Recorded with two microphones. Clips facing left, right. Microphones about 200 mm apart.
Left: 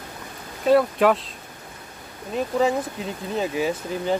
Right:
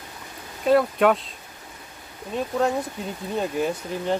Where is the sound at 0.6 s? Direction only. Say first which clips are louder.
Left 1 dB; centre (ahead or behind).